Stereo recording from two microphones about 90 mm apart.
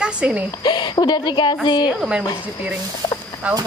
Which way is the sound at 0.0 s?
15° right (ahead or behind).